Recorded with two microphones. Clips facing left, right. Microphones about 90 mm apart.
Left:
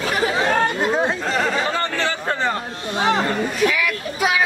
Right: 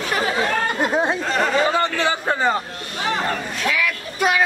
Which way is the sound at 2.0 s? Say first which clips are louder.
Right 2 dB; 10° right (ahead or behind).